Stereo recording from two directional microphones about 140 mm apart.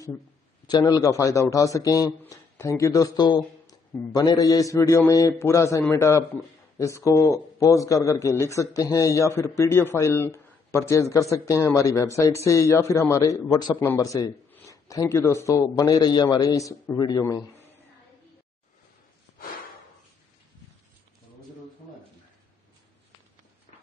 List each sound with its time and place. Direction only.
0.7 s a man's voice: 25° left (ahead or behind)
13.7 s a man's voice: 15° left (ahead or behind)